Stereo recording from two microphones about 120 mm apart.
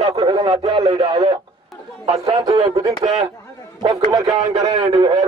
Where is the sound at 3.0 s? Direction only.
55° right (ahead or behind).